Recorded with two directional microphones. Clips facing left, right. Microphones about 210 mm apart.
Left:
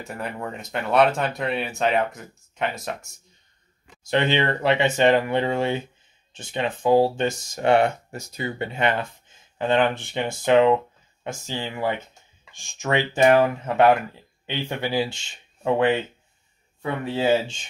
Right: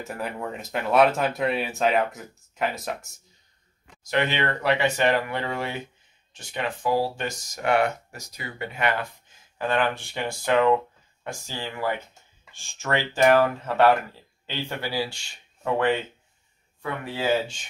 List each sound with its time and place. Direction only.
0.0 s speech: centre (ahead or behind)
4.0 s speech: 25° left (ahead or behind)